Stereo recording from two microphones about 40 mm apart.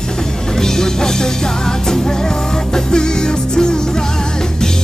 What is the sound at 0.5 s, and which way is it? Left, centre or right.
Music, centre.